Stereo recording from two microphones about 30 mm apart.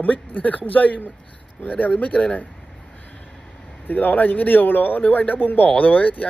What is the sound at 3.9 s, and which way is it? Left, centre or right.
Speech, left.